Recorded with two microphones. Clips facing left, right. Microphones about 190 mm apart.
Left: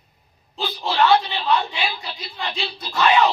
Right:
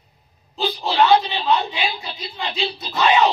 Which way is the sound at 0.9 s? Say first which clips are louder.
Right 1 dB; 15° right (ahead or behind).